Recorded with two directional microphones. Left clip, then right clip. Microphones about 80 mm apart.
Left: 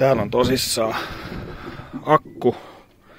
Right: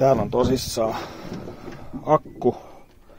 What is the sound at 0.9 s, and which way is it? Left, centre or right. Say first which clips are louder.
Speech: left 4 dB; centre.